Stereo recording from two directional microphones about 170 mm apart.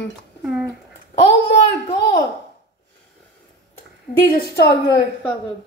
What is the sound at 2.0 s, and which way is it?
Speech, 75° left (ahead or behind).